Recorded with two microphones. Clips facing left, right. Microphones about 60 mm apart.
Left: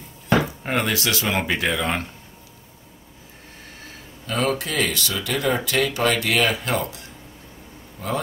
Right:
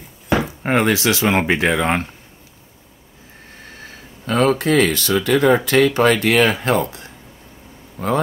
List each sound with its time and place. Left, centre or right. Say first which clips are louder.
0.7 s speech: right 6 dB; right
4.3 s speech: right 8 dB; right